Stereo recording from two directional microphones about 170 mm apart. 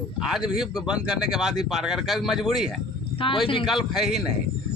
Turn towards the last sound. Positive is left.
turn(degrees=0)  # may be behind; listen again after turning